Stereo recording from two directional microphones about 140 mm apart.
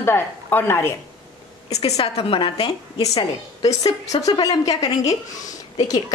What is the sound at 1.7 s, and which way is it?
A woman's voice, 50° left (ahead or behind).